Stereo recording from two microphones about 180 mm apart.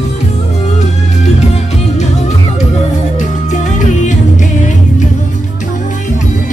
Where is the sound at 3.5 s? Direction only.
45° left (ahead or behind).